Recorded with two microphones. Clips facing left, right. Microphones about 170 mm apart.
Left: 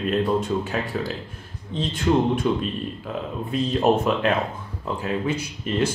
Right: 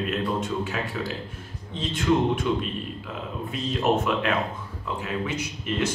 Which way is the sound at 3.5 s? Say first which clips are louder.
Left 4 dB; 35° left (ahead or behind).